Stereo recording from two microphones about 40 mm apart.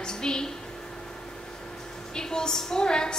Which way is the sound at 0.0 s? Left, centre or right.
Centre.